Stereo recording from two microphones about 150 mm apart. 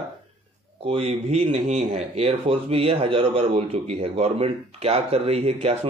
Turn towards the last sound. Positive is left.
turn(degrees=-40)  # may be behind; listen again after turning